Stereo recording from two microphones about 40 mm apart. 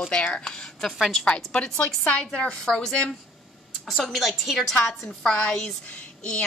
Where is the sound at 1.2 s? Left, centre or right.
Left.